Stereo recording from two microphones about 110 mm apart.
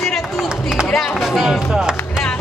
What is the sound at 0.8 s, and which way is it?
Chop, 5° left (ahead or behind).